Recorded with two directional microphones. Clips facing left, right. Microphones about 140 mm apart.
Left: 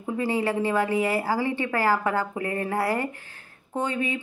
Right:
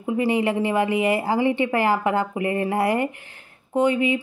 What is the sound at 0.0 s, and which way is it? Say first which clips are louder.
Speech: right 4 dB; 15° right (ahead or behind).